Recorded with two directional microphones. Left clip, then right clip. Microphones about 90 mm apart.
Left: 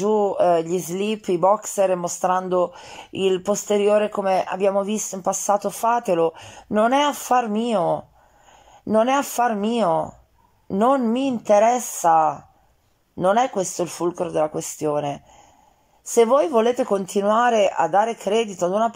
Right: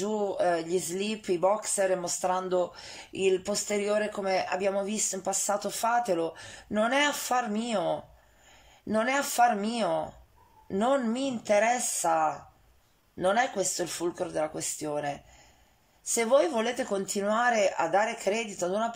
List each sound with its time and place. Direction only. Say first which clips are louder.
0.0 s speech: left 9 dB; 30° left (ahead or behind)
10.7 s speech: left 8 dB; 25° left (ahead or behind)
11.2 s speech: left 9 dB; 35° left (ahead or behind)